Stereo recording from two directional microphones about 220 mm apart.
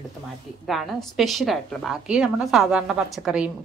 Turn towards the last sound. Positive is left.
turn(degrees=-5)  # may be behind; listen again after turning